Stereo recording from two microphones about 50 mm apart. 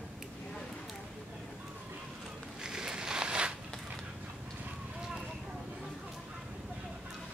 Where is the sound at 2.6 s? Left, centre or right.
Centre.